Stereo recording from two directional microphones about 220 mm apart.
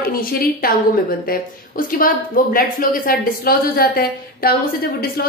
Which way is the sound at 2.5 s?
40° left (ahead or behind).